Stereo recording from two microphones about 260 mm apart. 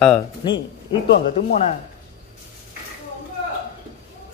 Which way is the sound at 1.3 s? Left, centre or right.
Left.